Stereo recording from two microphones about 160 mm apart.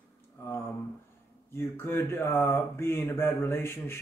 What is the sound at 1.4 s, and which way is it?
Speech, 15° left (ahead or behind).